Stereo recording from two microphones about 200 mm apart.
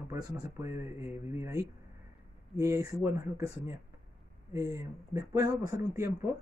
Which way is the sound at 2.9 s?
15° right (ahead or behind).